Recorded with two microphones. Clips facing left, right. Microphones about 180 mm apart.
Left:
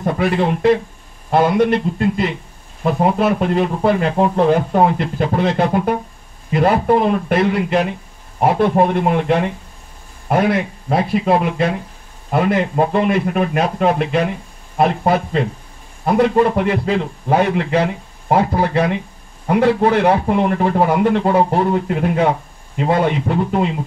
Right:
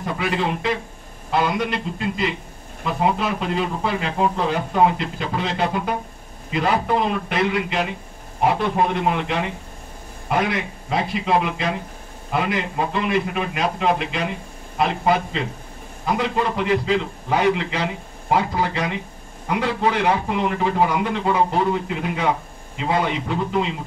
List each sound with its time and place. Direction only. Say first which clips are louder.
0.0 s speech: left 6 dB; 50° left (ahead or behind)